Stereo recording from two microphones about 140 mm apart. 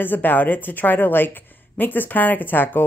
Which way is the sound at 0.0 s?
15° left (ahead or behind).